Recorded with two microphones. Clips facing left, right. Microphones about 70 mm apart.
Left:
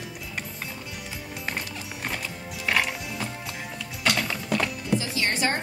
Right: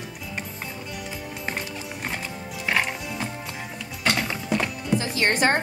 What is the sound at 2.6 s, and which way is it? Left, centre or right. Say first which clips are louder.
Music: right 1 dB; centre.